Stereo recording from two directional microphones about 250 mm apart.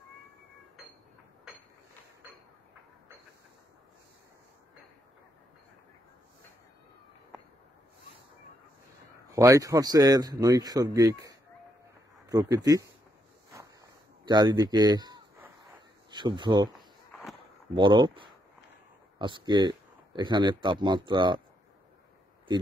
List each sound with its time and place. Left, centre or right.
9.3 s speech: centre
14.2 s a man's voice: centre
16.7 s a sound: centre
17.7 s speech: centre